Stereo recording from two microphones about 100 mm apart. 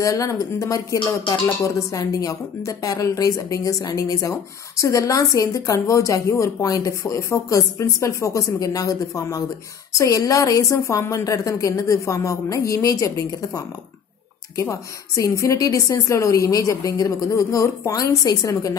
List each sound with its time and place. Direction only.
0.0 s a woman's voice: 35° left (ahead or behind)
14.6 s a woman's voice: 30° left (ahead or behind)